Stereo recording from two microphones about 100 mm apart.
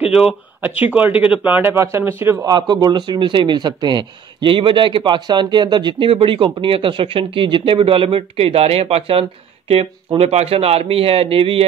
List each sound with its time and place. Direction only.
0.1 s speech: 5° right (ahead or behind)
0.7 s speech: 15° right (ahead or behind)
2.4 s speech: 40° right (ahead or behind)
3.1 s speech: 55° right (ahead or behind); by 11.6 s 70° right (ahead or behind)